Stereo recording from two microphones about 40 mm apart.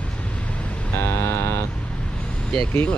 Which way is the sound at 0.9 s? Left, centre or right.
Left.